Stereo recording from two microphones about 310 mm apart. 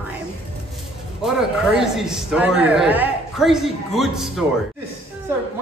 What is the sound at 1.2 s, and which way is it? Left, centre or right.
A man's voice, centre.